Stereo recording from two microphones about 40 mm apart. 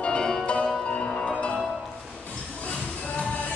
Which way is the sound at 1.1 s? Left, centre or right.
Centre.